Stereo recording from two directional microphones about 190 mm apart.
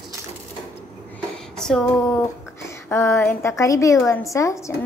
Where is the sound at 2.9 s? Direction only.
10° left (ahead or behind).